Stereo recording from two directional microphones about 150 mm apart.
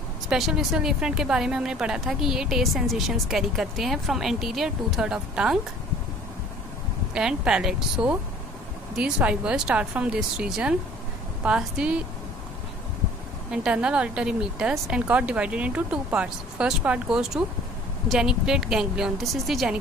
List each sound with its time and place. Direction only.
0.3 s a woman's voice: centre (ahead or behind)
7.2 s a woman's voice: 5° right (ahead or behind)
13.5 s a woman's voice: 5° right (ahead or behind)